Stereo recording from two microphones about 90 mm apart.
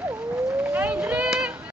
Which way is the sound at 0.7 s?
15° right (ahead or behind).